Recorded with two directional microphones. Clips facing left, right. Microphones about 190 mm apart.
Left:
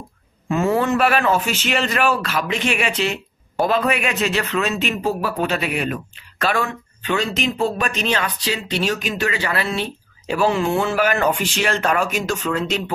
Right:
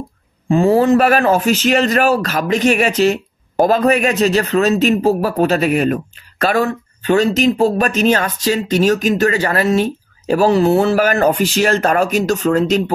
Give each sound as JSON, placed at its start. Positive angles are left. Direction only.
{"t": 0.5, "sound": "a man's voice", "side_deg": -30}